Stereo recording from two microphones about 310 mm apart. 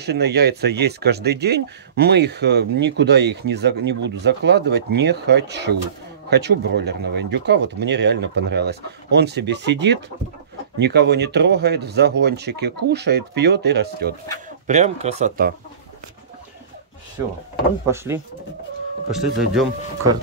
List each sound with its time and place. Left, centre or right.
0.0 s speech: right
14.7 s speech: right
17.8 s speech: centre